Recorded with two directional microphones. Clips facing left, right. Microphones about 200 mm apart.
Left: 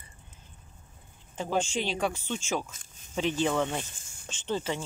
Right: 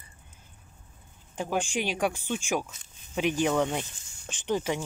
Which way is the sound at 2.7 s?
40° left (ahead or behind).